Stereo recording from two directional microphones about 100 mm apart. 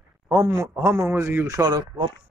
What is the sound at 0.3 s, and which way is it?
Speech, 30° right (ahead or behind).